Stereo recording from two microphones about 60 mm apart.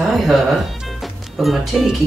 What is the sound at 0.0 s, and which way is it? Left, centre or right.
Music, centre.